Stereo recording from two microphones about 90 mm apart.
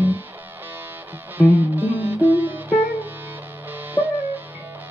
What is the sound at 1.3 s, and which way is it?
Music, 20° right (ahead or behind).